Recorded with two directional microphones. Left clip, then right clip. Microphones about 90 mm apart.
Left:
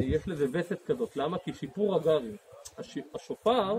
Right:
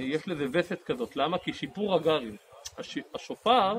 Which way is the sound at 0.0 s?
30° left (ahead or behind).